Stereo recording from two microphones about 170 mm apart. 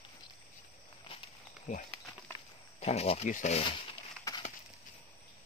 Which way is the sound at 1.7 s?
40° left (ahead or behind).